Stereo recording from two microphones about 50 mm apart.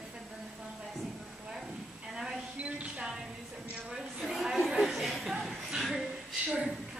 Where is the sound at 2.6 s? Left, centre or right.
Right.